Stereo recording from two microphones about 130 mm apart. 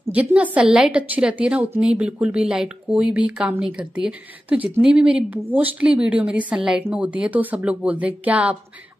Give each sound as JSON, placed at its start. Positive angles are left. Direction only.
{"t": 0.1, "sound": "a woman's voice", "side_deg": -10}